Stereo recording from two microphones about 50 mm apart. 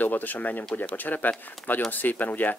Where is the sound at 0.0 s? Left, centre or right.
Left.